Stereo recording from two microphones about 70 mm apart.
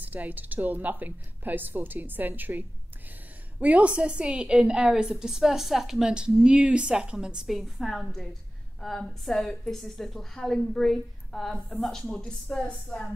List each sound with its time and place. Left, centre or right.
0.0 s a woman's voice: right
7.4 s a woman's voice: centre